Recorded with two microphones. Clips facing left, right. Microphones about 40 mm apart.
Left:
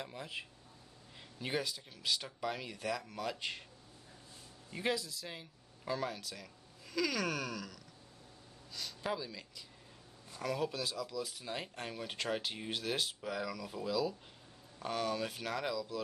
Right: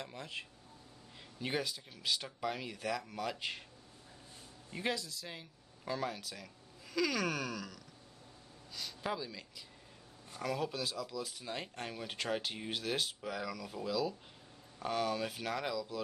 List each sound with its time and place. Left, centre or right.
0.0 s speech: centre
4.7 s speech: centre